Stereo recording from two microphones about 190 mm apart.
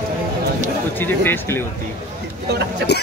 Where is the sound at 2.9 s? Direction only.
60° left (ahead or behind).